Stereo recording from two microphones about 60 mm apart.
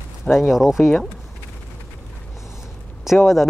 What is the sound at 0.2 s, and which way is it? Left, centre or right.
Speech, centre.